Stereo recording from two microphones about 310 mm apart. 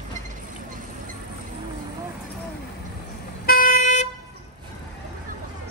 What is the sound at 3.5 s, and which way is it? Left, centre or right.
Vehicle, left.